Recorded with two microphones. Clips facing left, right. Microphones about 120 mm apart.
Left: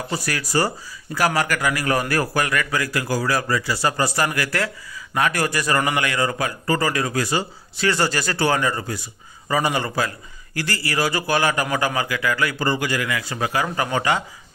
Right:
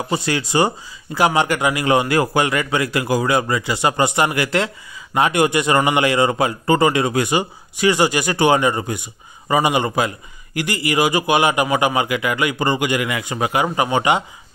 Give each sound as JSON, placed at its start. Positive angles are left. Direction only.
{"t": 0.1, "sound": "a man's voice", "side_deg": -25}